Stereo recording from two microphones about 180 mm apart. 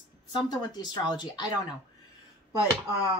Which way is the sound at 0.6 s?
25° left (ahead or behind).